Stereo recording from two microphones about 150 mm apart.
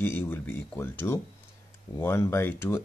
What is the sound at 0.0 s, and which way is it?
Speech, 15° left (ahead or behind).